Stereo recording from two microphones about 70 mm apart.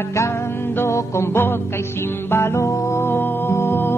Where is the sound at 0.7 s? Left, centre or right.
Left.